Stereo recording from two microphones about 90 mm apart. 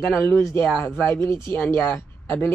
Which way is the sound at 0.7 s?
20° left (ahead or behind).